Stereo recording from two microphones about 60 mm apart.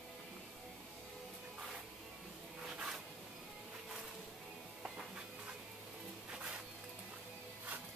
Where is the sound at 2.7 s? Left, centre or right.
Centre.